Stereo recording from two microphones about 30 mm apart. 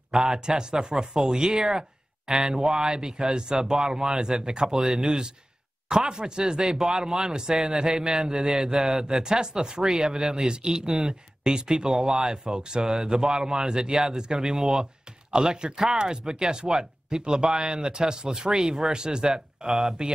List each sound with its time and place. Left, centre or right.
0.1 s speech: right
12.5 s speech: right
12.8 s speech: centre
19.7 s speech: centre